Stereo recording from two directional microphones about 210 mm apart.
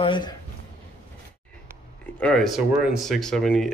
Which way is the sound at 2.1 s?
5° left (ahead or behind).